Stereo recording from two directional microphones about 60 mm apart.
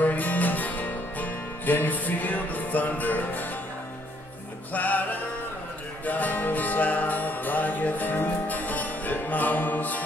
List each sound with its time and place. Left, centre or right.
0.0 s music: left
4.7 s music: left
6.0 s music: left